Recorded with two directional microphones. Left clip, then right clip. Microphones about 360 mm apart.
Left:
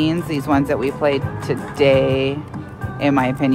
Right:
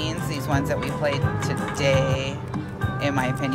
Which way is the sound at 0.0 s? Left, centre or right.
Centre.